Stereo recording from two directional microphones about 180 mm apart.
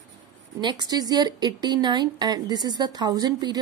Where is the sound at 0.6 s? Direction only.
25° right (ahead or behind).